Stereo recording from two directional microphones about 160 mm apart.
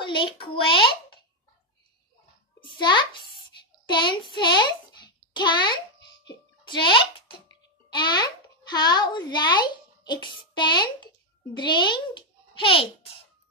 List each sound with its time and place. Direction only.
0.0 s a child's voice: 30° left (ahead or behind)
2.6 s music: 30° left (ahead or behind)
3.8 s speech: 30° left (ahead or behind)
4.4 s a sound: 30° left (ahead or behind)
6.7 s a child's voice: 30° left (ahead or behind)